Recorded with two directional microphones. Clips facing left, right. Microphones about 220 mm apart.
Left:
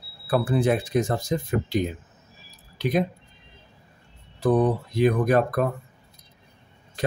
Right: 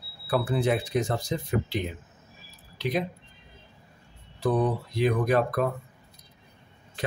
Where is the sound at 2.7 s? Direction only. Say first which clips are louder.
Left 4 dB; 50° left (ahead or behind).